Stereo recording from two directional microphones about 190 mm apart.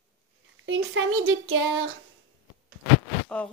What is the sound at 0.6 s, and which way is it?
Speech, 85° right.